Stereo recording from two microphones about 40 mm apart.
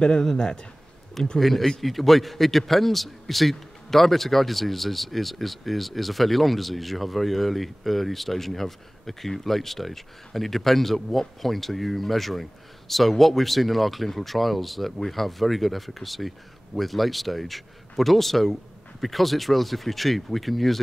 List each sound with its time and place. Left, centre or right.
0.0 s speech: centre
1.4 s a man's voice: centre